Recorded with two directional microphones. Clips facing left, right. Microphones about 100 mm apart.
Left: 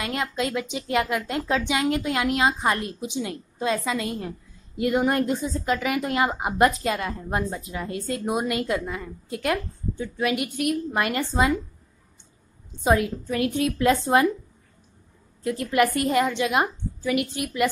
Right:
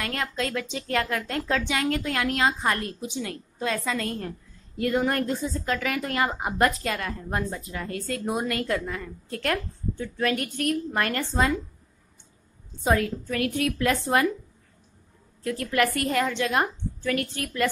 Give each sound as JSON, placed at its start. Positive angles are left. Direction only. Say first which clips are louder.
{"t": 0.0, "sound": "speech", "louder": "left 2 dB", "side_deg": 15}
{"t": 12.8, "sound": "a woman's voice", "louder": "left 2 dB", "side_deg": 20}
{"t": 15.4, "sound": "speech", "louder": "left 3 dB", "side_deg": 20}